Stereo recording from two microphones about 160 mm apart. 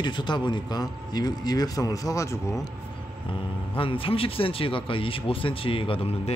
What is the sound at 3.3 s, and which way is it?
A man's voice, 35° left (ahead or behind).